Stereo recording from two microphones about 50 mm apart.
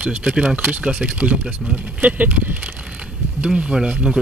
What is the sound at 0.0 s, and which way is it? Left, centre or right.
Speech, right.